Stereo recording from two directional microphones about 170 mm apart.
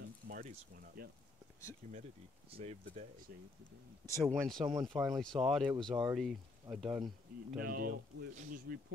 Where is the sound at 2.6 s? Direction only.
40° right (ahead or behind).